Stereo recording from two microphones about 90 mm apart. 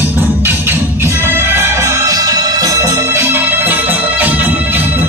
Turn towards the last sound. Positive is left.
turn(degrees=-20)  # may be behind; listen again after turning